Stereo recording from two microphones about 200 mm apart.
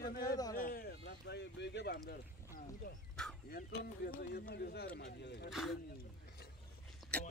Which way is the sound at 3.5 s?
50° left (ahead or behind).